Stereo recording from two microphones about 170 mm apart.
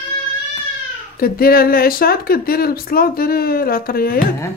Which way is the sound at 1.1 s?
60° left (ahead or behind).